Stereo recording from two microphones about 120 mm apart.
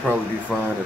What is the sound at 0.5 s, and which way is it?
Speech, 15° right (ahead or behind).